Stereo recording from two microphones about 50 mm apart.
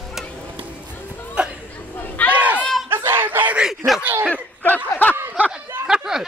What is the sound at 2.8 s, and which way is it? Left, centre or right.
Snicker, right.